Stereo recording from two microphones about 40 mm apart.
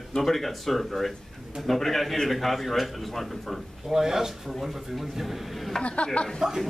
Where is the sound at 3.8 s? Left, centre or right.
Centre.